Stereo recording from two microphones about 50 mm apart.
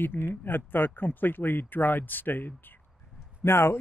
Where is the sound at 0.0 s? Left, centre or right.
Left.